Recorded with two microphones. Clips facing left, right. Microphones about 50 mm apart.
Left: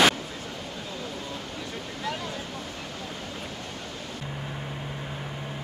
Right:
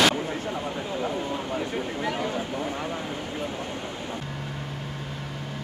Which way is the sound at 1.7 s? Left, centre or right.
Right.